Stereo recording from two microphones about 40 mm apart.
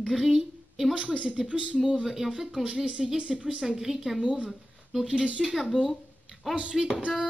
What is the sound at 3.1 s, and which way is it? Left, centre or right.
Speech, right.